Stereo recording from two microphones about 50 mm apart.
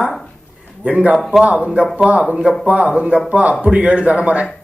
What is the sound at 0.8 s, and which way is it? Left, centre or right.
Speech, right.